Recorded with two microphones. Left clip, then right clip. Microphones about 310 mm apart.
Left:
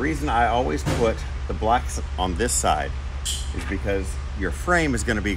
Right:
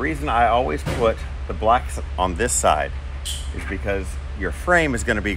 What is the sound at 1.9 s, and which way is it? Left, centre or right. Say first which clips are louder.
Speech: right 4 dB; right.